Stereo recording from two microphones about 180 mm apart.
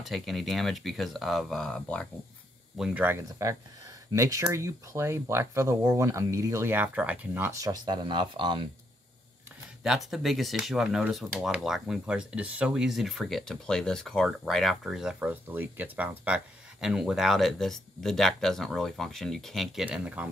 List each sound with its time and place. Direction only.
0.0 s speech: centre (ahead or behind)
2.8 s speech: 10° right (ahead or behind); by 8.6 s 25° right (ahead or behind)
9.8 s speech: centre (ahead or behind)